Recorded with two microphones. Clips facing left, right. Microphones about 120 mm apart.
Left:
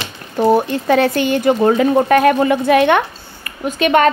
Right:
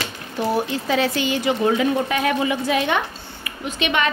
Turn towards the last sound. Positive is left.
turn(degrees=45)  # may be behind; listen again after turning